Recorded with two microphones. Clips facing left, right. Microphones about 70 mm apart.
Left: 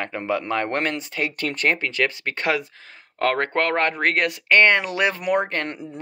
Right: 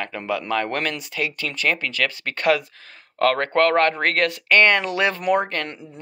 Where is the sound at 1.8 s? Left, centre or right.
Left.